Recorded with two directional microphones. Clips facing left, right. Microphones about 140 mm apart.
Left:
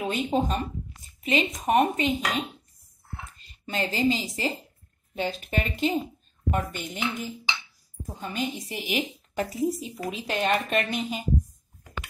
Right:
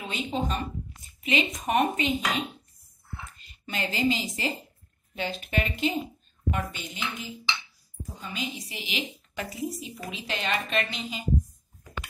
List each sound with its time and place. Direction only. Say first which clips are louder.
0.0 s a woman's voice: left 5 dB; 50° left (ahead or behind)
3.6 s speech: left 2 dB; 40° left (ahead or behind)
6.5 s a woman's voice: left 5 dB; 50° left (ahead or behind)